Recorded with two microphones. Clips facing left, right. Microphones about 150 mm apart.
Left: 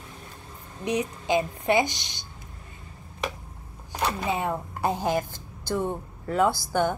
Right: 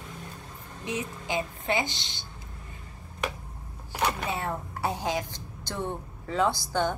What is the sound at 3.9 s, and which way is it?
Speech, 15° left (ahead or behind).